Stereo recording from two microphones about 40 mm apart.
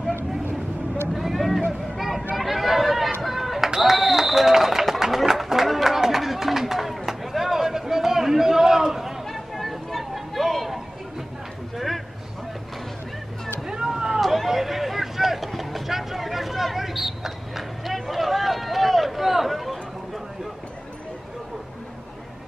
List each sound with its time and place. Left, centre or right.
1.1 s vehicle: centre
1.7 s a sound: centre
3.2 s run: centre
9.3 s chatter: centre
11.7 s a sound: centre
13.7 s vehicle: centre
14.2 s vehicle: centre